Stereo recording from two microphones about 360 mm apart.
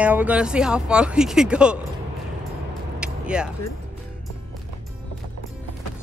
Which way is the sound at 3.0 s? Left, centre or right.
Centre.